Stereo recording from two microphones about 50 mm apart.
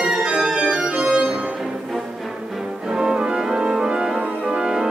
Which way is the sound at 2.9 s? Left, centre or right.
Centre.